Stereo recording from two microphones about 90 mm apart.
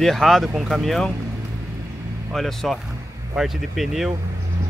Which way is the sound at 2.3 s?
Centre (ahead or behind).